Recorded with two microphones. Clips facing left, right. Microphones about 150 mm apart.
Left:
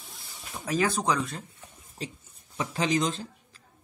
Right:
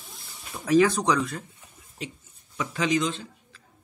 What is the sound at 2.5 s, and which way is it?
A man's voice, 35° left (ahead or behind).